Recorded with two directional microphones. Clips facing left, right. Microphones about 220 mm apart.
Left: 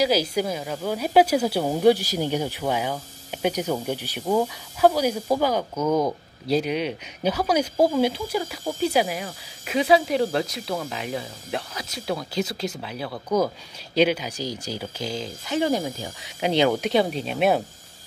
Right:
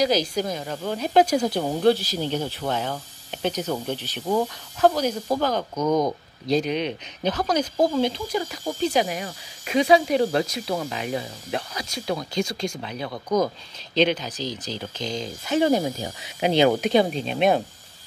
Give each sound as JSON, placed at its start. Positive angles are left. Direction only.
{"t": 0.0, "sound": "speech", "side_deg": 5}
{"t": 15.6, "sound": "speech", "side_deg": -20}
{"t": 16.8, "sound": "speech", "side_deg": 0}